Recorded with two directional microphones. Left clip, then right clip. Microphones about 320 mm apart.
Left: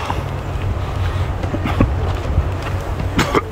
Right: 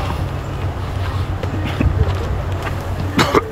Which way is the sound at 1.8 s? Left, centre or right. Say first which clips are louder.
Left 4 dB; centre.